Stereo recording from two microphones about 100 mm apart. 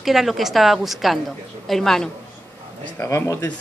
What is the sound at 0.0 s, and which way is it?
A woman's voice, centre (ahead or behind).